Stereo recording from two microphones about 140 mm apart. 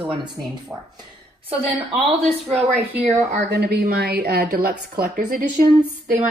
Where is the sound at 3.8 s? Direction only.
90° right.